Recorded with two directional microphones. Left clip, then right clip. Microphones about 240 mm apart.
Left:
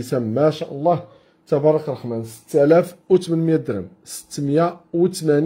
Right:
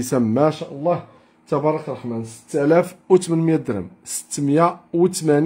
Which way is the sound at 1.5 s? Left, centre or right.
Centre.